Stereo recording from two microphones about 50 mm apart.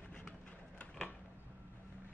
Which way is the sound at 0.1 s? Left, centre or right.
Left.